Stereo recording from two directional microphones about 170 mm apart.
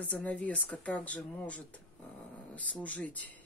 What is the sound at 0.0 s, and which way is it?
Speech, 10° left (ahead or behind).